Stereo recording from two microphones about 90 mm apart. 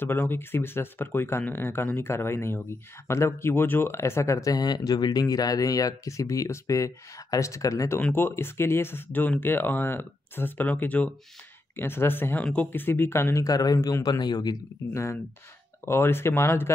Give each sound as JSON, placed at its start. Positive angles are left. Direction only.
{"t": 0.0, "sound": "speech", "side_deg": 25}
{"t": 8.0, "sound": "speech", "side_deg": 25}
{"t": 15.8, "sound": "speech", "side_deg": 25}